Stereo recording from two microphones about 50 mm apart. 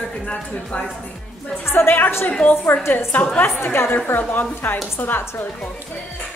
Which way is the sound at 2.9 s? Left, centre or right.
Left.